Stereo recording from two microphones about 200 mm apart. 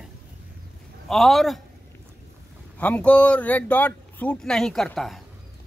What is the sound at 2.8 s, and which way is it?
A man's voice, 5° left (ahead or behind).